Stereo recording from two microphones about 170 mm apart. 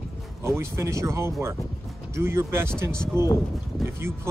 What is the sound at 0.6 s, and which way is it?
Speech, 15° right (ahead or behind).